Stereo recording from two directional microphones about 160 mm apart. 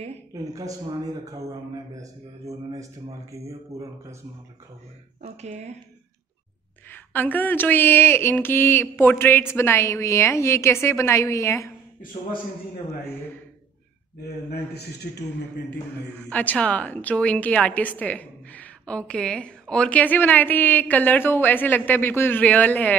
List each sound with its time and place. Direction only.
0.3 s a man's voice: 20° right (ahead or behind)
5.2 s speech: 45° right (ahead or behind)
6.9 s a woman's voice: 10° left (ahead or behind)
14.5 s a man's voice: 90° left
16.3 s a woman's voice: 10° left (ahead or behind)